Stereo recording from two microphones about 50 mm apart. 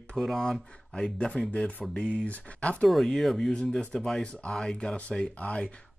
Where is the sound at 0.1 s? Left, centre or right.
Centre.